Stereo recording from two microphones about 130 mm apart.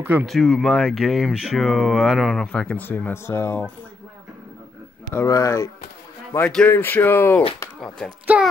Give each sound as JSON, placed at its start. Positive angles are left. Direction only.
{"t": 0.3, "sound": "speech", "side_deg": 5}
{"t": 5.1, "sound": "speech", "side_deg": 25}
{"t": 6.3, "sound": "speech", "side_deg": 10}
{"t": 8.3, "sound": "a child's voice", "side_deg": -10}